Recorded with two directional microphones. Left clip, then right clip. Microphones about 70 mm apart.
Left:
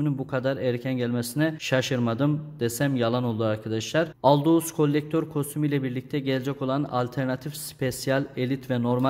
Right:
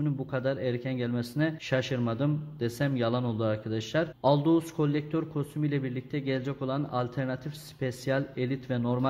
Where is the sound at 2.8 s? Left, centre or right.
Left.